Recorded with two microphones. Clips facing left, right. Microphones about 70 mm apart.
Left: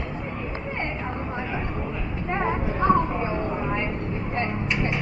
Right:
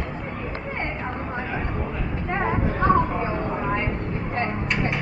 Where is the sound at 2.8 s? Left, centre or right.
Right.